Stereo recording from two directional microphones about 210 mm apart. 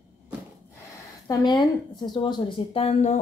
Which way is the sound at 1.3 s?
20° left (ahead or behind).